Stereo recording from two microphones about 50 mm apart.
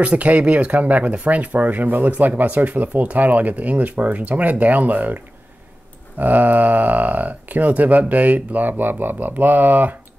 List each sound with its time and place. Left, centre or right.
0.0 s speech: right